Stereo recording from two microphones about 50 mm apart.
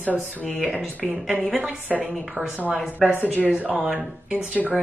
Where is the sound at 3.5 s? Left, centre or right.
Right.